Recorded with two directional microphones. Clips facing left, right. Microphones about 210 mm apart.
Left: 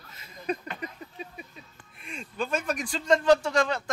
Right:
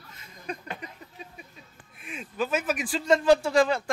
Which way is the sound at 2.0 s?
5° right (ahead or behind).